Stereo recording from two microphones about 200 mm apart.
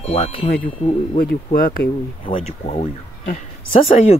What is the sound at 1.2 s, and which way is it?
Speech, 45° left (ahead or behind).